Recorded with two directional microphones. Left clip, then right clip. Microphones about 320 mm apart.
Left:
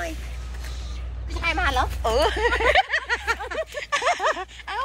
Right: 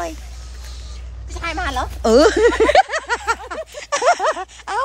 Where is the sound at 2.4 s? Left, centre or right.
Right.